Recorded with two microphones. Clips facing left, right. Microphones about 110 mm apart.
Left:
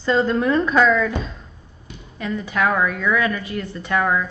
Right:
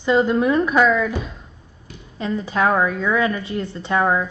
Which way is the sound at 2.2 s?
30° right (ahead or behind).